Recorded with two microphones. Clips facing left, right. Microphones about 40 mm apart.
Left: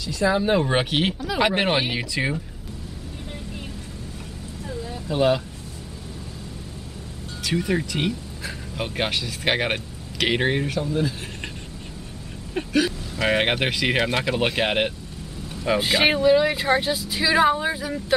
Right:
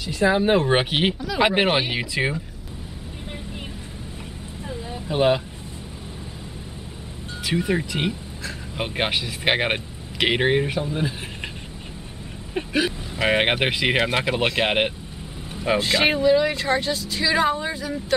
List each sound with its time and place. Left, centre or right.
0.0 s speech: right
4.6 s vehicle: right
7.4 s speech: centre
12.7 s speech: centre
15.5 s vehicle: centre
15.8 s speech: centre